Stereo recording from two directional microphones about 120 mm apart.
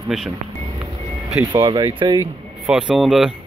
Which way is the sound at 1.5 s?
40° right (ahead or behind).